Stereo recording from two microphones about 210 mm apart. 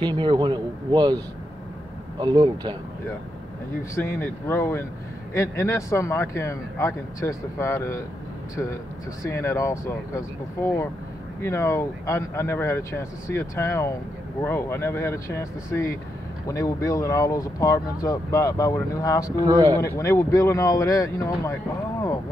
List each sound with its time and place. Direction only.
0.0 s speech: 20° right (ahead or behind)
3.9 s speech: 15° left (ahead or behind)
9.2 s speech: 15° left (ahead or behind)
19.4 s speech: 20° right (ahead or behind)
19.8 s speech: 15° left (ahead or behind)